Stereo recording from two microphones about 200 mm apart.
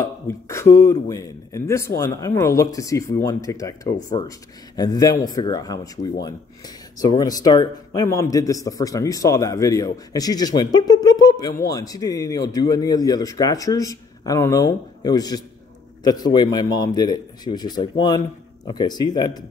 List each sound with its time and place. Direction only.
0.0 s a man's voice: 15° left (ahead or behind)